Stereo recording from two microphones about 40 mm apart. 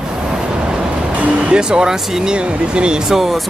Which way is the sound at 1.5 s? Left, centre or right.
Centre.